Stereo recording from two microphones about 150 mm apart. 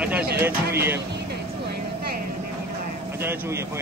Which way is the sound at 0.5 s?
90° right.